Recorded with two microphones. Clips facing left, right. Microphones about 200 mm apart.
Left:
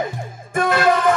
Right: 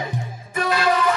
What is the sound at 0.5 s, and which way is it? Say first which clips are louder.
Music: left 3 dB; 50° left (ahead or behind).